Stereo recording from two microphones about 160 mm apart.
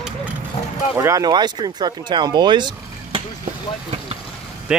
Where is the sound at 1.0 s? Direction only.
20° right (ahead or behind).